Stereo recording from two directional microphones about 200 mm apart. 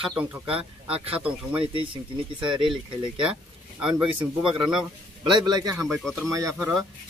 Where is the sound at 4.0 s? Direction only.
25° right (ahead or behind).